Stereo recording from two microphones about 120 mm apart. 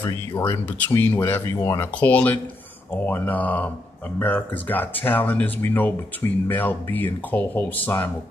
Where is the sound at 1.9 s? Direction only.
15° left (ahead or behind).